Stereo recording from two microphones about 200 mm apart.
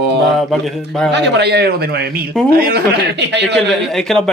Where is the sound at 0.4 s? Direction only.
Centre (ahead or behind).